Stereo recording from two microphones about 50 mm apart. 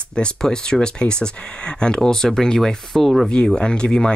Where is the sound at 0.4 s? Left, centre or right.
Centre.